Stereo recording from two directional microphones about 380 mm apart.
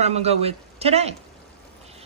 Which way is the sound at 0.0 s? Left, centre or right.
Centre.